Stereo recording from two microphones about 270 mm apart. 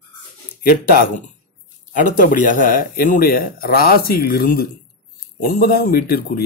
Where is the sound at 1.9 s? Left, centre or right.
Left.